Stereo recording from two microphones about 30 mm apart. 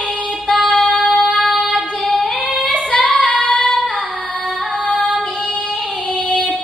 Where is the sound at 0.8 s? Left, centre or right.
Left.